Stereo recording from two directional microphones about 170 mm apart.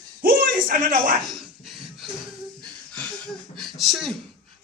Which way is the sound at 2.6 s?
5° left (ahead or behind).